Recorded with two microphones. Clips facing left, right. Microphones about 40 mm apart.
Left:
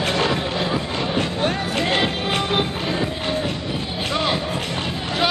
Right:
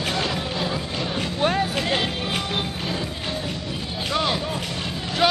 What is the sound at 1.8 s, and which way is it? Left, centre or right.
Music, centre.